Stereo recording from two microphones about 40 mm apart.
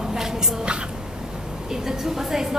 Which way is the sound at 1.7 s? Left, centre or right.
Centre.